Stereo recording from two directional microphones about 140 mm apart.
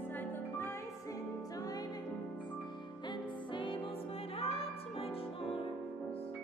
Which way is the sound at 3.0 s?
35° left (ahead or behind).